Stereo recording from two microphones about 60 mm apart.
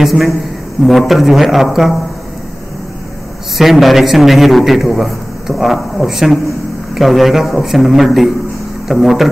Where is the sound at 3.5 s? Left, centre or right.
Centre.